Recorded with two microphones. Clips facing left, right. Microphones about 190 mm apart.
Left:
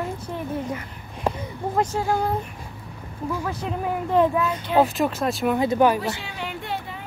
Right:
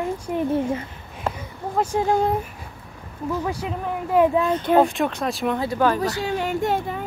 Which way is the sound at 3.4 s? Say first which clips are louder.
Right 1 dB; 10° right (ahead or behind).